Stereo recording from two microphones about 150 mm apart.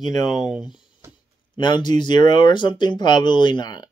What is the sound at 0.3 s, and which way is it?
Speech, 25° left (ahead or behind).